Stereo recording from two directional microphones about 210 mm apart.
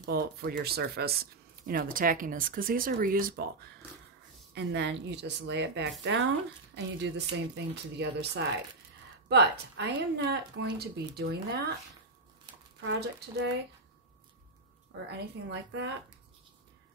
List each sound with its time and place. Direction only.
0.0 s speech: 45° right (ahead or behind)
4.6 s speech: 55° right (ahead or behind)
9.3 s speech: 55° right (ahead or behind)
12.8 s speech: 50° right (ahead or behind)
15.0 s speech: 55° right (ahead or behind)